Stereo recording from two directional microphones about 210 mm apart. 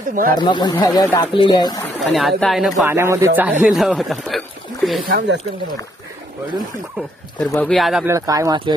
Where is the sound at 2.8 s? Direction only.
15° right (ahead or behind).